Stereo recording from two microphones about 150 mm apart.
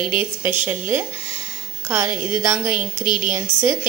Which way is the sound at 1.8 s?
20° right (ahead or behind).